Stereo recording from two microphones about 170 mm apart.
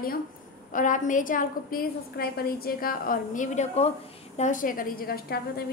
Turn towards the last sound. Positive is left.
turn(degrees=65)  # may be behind; listen again after turning